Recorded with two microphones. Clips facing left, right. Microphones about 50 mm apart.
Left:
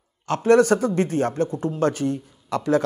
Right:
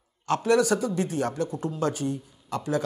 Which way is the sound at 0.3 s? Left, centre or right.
Left.